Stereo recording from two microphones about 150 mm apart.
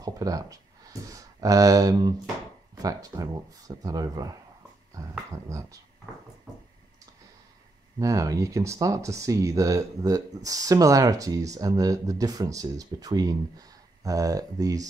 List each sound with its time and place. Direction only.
0.0 s speech: 25° right (ahead or behind)
5.5 s speech: 20° right (ahead or behind)
8.0 s speech: 20° right (ahead or behind)